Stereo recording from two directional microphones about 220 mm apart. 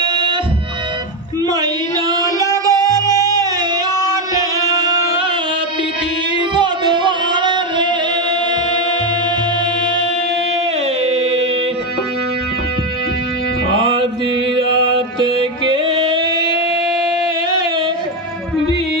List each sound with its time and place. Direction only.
0.0 s music: 20° right (ahead or behind)
1.5 s a sound: 20° right (ahead or behind)
2.5 s music: 15° right (ahead or behind)
6.3 s music: 20° right (ahead or behind)
15.0 s music: 25° right (ahead or behind)